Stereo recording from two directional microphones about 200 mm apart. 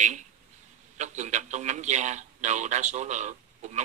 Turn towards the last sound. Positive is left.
turn(degrees=-35)  # may be behind; listen again after turning